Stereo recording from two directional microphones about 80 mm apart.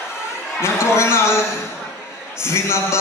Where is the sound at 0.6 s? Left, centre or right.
Left.